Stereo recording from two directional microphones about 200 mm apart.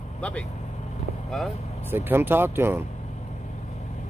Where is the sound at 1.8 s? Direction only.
10° right (ahead or behind).